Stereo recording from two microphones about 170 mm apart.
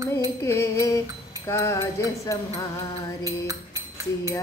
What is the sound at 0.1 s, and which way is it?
Music, 15° left (ahead or behind).